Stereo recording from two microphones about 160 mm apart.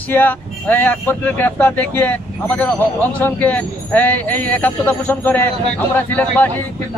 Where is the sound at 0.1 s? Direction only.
10° left (ahead or behind).